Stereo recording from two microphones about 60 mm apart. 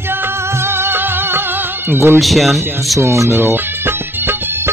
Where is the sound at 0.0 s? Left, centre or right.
Right.